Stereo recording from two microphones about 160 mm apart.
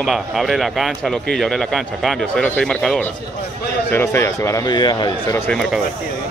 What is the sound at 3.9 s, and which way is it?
A man's voice, 15° left (ahead or behind).